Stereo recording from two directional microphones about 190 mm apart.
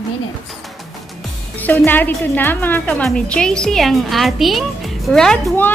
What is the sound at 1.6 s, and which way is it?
A woman's voice, 10° left (ahead or behind).